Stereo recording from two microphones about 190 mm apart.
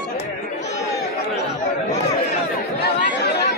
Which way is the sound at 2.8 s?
60° left (ahead or behind).